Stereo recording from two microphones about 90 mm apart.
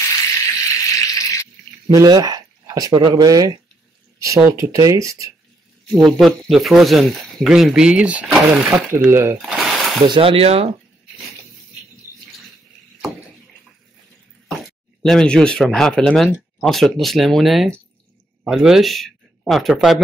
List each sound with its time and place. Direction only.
0.0 s a sound: 35° left (ahead or behind)
2.0 s speech: 45° right (ahead or behind)
5.9 s speech: centre (ahead or behind); by 8.3 s 15° right (ahead or behind)
9.1 s speech: 25° right (ahead or behind)
9.5 s mechanisms: centre (ahead or behind)
10.0 s speech: 75° right (ahead or behind); by 10.7 s 90° right
15.0 s speech: 5° left (ahead or behind)